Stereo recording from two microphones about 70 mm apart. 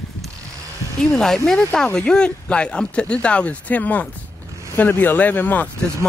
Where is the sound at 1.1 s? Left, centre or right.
Centre; by 5.7 s left.